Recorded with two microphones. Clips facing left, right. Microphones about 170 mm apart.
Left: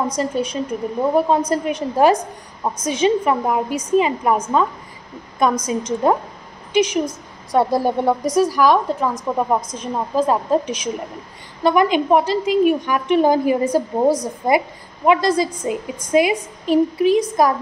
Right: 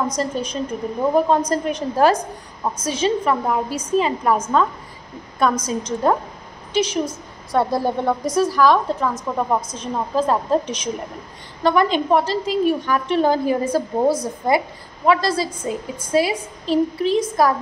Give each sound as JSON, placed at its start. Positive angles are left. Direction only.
{"t": 0.1, "sound": "a woman's voice", "side_deg": 10}